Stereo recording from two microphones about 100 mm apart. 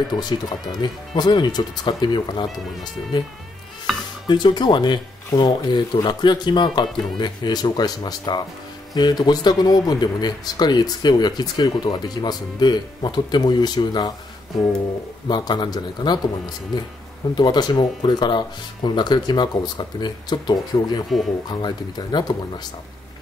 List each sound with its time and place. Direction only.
0.1 s speech: 45° left (ahead or behind)
3.9 s music: centre (ahead or behind)
4.3 s speech: 50° left (ahead or behind)
15.2 s speech: 45° left (ahead or behind)